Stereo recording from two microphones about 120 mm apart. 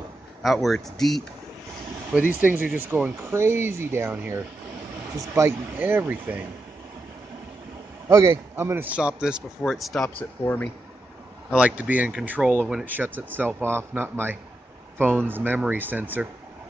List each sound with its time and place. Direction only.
0.4 s speech: centre (ahead or behind)
2.1 s speech: 10° right (ahead or behind)
8.1 s a man's voice: 25° right (ahead or behind)
8.9 s speech: 10° right (ahead or behind)
10.4 s speech: 15° left (ahead or behind)
11.5 s speech: 10° right (ahead or behind)